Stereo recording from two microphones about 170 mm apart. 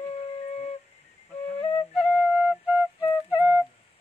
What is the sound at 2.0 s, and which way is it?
Flute, centre (ahead or behind).